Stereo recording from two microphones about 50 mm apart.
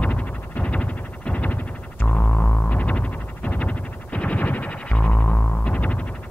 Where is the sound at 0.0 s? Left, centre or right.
Left.